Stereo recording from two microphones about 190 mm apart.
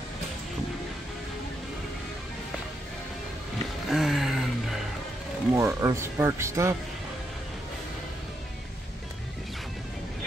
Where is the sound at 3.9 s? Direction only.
Centre (ahead or behind).